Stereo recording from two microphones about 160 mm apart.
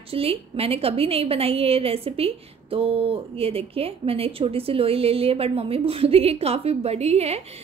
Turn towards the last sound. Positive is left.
turn(degrees=-40)  # may be behind; listen again after turning